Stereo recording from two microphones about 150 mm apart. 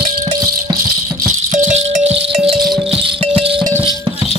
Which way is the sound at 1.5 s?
55° right (ahead or behind).